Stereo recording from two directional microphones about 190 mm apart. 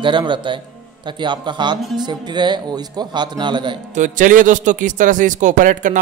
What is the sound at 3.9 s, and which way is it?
Speech, 40° right (ahead or behind).